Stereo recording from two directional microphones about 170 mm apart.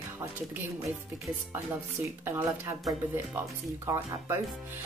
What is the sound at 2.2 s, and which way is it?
A woman's voice, 15° right (ahead or behind).